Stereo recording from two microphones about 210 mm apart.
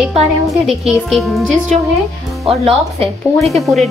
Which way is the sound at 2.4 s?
30° right (ahead or behind).